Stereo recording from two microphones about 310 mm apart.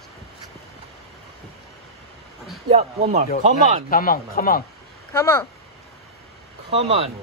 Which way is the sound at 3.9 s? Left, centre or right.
Left.